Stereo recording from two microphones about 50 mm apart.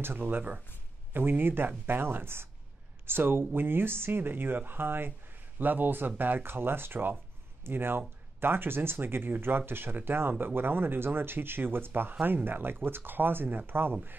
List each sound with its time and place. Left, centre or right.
1.1 s speech: right